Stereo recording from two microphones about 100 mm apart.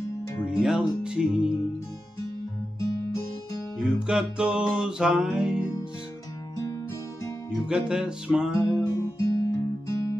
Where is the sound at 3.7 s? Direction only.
5° right (ahead or behind).